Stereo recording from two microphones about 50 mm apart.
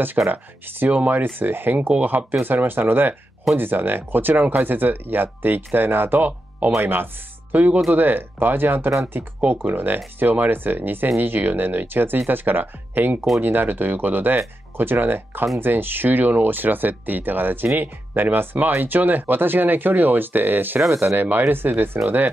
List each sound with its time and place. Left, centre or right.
0.3 s speech: right
20.9 s speech: right
21.2 s speech: right